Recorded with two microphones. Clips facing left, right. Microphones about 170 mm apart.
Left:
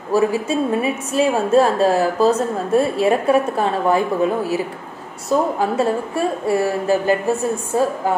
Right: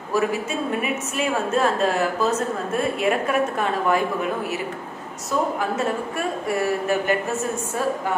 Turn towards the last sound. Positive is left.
turn(degrees=30)  # may be behind; listen again after turning